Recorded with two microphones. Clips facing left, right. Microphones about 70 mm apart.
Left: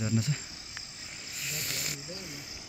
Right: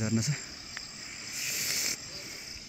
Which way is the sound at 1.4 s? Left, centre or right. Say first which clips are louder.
Even; centre.